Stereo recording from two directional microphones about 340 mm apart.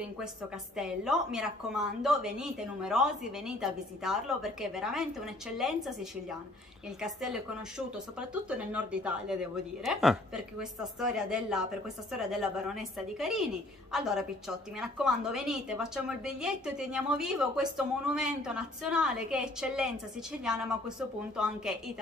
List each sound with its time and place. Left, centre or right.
0.7 s a woman's voice: centre
7.0 s a woman's voice: centre